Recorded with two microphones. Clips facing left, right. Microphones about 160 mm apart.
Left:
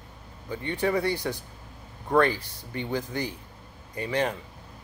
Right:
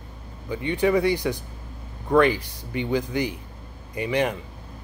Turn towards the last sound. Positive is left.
turn(degrees=-15)  # may be behind; listen again after turning